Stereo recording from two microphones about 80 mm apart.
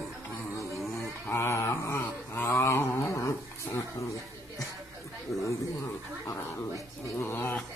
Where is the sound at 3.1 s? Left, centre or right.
Left.